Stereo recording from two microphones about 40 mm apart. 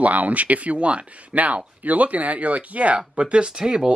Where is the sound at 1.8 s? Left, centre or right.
Right.